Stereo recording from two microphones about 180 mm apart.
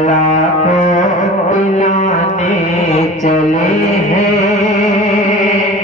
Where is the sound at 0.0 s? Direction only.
40° left (ahead or behind).